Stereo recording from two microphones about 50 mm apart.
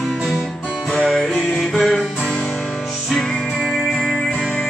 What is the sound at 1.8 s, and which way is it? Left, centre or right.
Music, centre.